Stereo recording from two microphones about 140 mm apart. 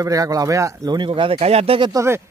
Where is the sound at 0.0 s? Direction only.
25° right (ahead or behind); by 1.8 s 45° right (ahead or behind).